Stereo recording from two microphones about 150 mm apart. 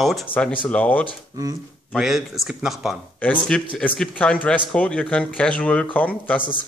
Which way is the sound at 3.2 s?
10° left (ahead or behind).